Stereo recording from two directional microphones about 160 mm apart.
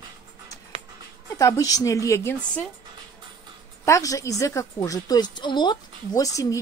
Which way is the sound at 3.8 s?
20° left (ahead or behind).